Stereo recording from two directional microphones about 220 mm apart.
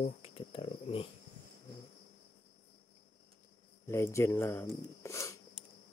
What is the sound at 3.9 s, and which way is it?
Speech, 15° left (ahead or behind).